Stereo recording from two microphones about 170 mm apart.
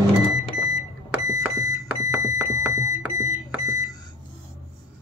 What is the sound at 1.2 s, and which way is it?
Alarm clock, 20° right (ahead or behind).